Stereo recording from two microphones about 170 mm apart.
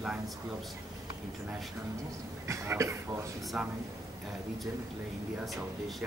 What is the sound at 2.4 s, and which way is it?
Speech, 15° right (ahead or behind).